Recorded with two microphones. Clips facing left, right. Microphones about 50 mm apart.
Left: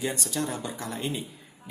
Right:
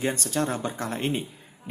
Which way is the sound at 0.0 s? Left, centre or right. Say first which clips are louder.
Right 4 dB; right.